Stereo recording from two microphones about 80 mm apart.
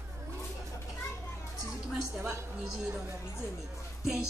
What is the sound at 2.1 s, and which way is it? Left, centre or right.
Speech, centre.